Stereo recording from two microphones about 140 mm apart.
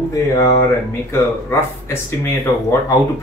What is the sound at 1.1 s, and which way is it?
Speech, 20° left (ahead or behind).